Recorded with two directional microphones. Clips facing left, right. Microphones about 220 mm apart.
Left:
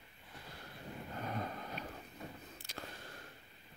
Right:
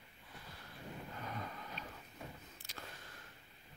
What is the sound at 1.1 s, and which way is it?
Vehicle, 40° left (ahead or behind).